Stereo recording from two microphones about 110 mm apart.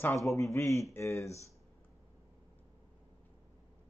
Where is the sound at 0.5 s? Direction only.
25° left (ahead or behind).